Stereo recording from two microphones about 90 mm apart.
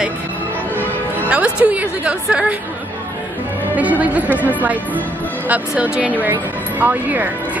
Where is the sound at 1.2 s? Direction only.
15° right (ahead or behind).